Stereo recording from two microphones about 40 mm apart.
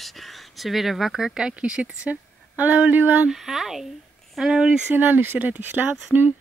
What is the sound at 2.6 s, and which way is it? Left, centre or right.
Speech, right.